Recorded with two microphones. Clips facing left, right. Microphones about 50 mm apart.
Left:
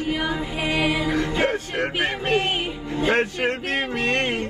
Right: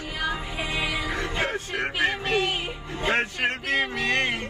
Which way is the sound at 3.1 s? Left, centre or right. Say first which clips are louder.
Left 2 dB; right.